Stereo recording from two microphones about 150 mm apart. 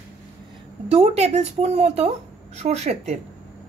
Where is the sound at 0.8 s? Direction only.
45° right (ahead or behind).